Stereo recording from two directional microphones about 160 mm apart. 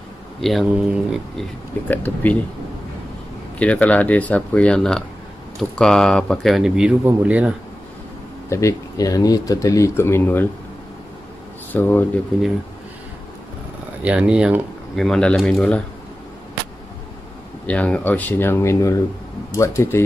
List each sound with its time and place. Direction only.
0.4 s speech: centre (ahead or behind)
1.9 s speech: 10° left (ahead or behind)
3.5 s speech: 10° left (ahead or behind); by 7.5 s 10° right (ahead or behind)
8.5 s speech: 20° left (ahead or behind)
11.7 s speech: 10° left (ahead or behind)
14.0 s speech: 5° right (ahead or behind)
17.6 s speech: 10° left (ahead or behind)